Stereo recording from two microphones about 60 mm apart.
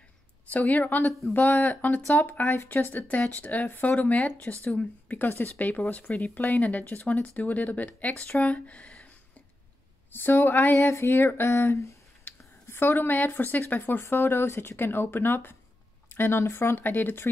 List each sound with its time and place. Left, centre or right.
0.5 s speech: left
10.1 s speech: left
10.9 s speech: left
12.3 s speech: left